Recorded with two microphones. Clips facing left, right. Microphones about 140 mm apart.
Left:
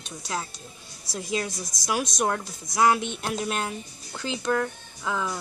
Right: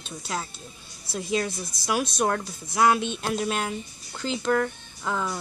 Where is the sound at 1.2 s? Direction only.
15° left (ahead or behind).